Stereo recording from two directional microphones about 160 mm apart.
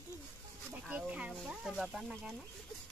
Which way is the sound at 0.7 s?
10° right (ahead or behind).